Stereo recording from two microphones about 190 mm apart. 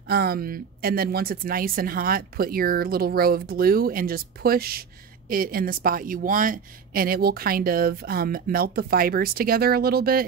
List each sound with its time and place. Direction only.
0.1 s a woman's voice: 55° right (ahead or behind)